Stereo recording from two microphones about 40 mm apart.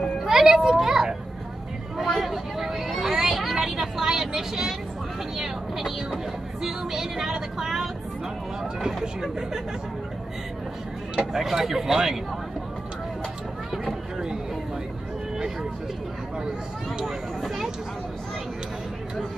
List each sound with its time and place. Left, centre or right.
0.2 s a child's voice: centre
5.4 s vehicle: centre
11.1 s vehicle: centre
17.0 s speech: centre